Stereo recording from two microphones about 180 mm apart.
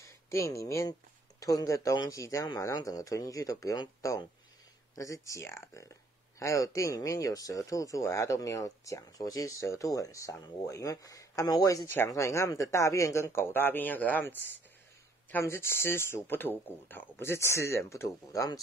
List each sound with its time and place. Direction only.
0.0 s speech: 20° left (ahead or behind)